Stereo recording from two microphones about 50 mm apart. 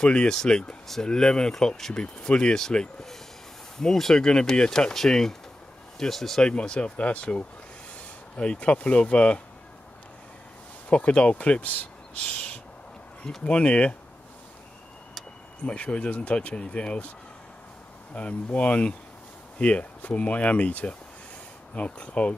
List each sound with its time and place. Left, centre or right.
0.0 s speech: centre
6.4 s speech: centre
10.9 s speech: left
15.6 s speech: left
18.1 s speech: left